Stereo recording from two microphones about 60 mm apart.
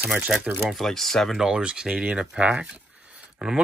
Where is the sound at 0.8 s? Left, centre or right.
Centre.